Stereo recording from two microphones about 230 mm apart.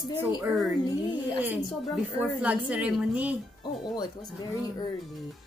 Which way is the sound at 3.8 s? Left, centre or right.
Centre.